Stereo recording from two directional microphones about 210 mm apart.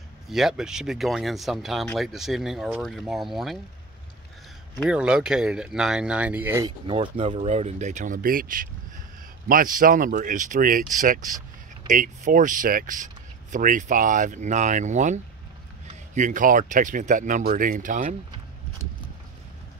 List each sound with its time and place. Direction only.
0.3 s speech: centre (ahead or behind)
4.8 s speech: 5° right (ahead or behind)
6.9 s speech: 25° right (ahead or behind)
16.2 s speech: 40° right (ahead or behind)